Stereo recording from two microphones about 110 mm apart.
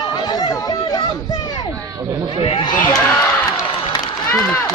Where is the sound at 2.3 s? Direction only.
55° left (ahead or behind).